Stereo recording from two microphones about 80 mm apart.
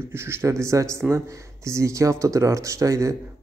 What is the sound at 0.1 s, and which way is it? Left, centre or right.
A man's voice, right.